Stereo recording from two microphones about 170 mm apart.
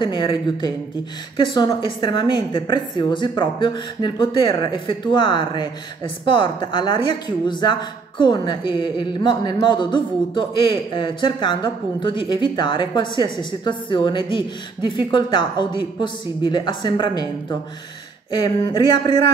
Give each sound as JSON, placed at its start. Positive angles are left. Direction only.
{"t": 0.0, "sound": "a woman's voice", "side_deg": 30}